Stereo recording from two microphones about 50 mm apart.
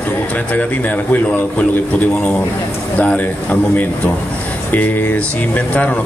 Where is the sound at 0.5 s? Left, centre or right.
Left.